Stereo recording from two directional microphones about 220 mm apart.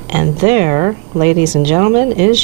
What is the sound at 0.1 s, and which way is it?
Speech, 15° right (ahead or behind).